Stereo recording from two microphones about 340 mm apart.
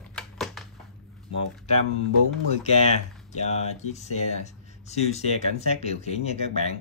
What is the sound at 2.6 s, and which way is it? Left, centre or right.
Speech, centre.